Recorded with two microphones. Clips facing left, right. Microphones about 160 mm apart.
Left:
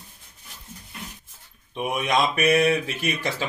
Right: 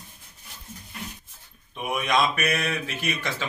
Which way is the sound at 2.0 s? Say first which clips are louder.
Left 1 dB; 30° left (ahead or behind).